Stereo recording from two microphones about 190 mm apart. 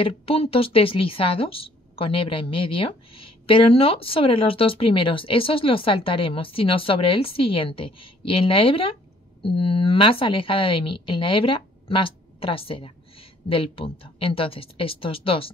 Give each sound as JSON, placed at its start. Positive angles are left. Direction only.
{"t": 0.0, "sound": "a woman's voice", "side_deg": 30}